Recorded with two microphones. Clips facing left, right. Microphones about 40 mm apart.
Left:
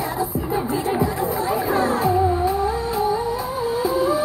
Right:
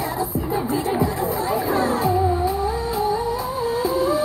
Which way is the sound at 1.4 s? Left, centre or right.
Left.